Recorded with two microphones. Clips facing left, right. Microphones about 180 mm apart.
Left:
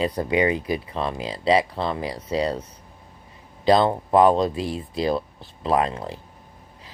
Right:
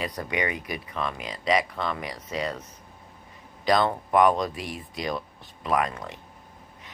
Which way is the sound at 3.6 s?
25° left (ahead or behind).